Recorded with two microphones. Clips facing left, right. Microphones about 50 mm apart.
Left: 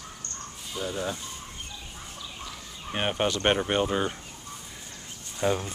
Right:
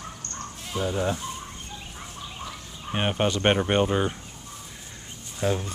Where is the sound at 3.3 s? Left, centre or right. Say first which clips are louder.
Right 2 dB; centre.